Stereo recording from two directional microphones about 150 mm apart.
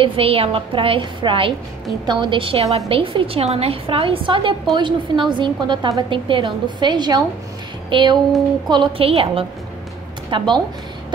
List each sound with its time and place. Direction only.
0.0 s a woman's voice: 35° right (ahead or behind)